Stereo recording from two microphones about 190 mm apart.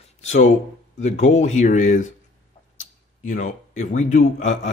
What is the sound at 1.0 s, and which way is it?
A man's voice, 35° left (ahead or behind).